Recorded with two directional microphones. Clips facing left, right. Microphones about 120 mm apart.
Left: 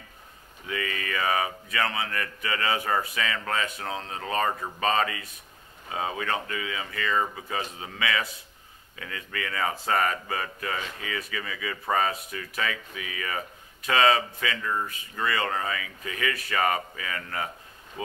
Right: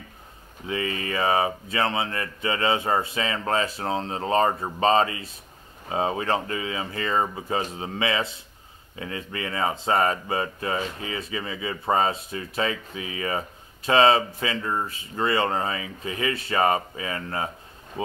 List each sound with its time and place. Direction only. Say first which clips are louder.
0.7 s speech: right 4 dB; 25° right (ahead or behind)